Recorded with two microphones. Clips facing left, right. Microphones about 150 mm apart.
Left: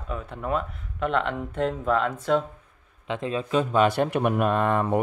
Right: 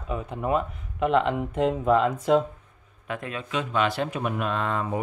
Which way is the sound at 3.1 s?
30° left (ahead or behind).